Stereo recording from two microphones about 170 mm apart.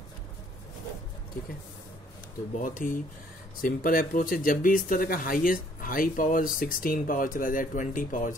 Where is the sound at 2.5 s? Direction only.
50° left (ahead or behind).